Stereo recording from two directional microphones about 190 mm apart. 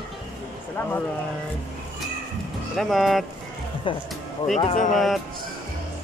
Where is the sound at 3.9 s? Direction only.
25° left (ahead or behind).